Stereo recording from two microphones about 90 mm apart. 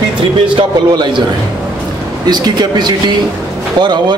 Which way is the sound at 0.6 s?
60° right (ahead or behind).